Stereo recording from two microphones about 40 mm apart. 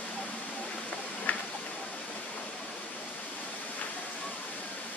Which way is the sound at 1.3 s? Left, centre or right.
Left.